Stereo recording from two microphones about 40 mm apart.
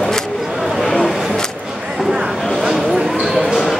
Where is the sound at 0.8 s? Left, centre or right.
Centre.